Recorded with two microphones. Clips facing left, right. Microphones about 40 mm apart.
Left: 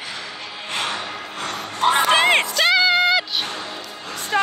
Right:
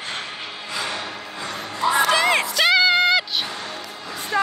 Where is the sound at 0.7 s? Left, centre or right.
Left.